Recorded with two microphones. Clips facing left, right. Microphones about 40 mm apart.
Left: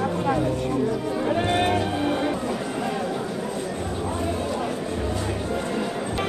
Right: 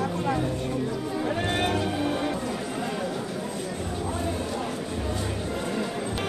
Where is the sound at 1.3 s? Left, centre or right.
Centre.